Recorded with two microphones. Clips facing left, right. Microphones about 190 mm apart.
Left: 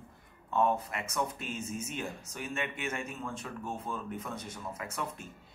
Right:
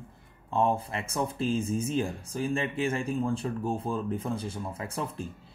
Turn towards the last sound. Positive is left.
turn(degrees=-30)  # may be behind; listen again after turning